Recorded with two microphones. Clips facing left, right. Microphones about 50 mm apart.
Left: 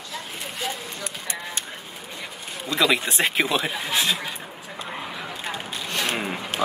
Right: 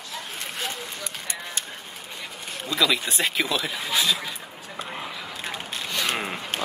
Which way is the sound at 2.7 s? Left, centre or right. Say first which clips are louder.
Left 2 dB; left.